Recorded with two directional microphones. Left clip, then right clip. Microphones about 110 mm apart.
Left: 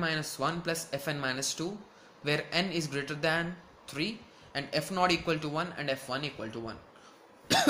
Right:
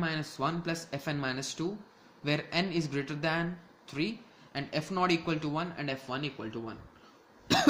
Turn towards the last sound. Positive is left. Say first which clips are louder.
# left 1 dB
turn(degrees=-35)  # may be behind; listen again after turning